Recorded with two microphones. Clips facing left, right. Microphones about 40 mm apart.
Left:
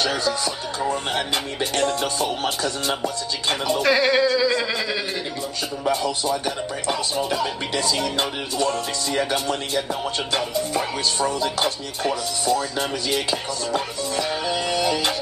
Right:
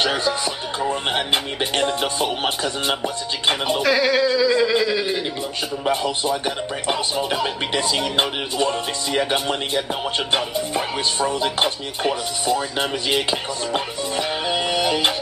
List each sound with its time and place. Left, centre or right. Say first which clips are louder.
0.0 s speech: right 2 dB; right
3.8 s a sound: even; centre
5.9 s speech: right 1 dB; right
9.8 s speech: right 2 dB; right
10.8 s speech: right 2 dB; centre
11.3 s speech: right 2 dB; right
13.1 s music: right 2 dB; right